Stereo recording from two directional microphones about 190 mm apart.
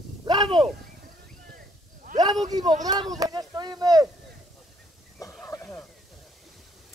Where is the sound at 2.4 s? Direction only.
20° right (ahead or behind).